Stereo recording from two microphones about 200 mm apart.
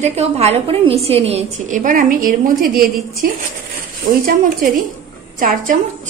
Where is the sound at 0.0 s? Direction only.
30° right (ahead or behind).